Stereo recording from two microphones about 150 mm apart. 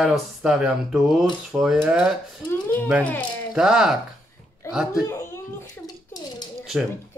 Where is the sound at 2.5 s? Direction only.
10° left (ahead or behind).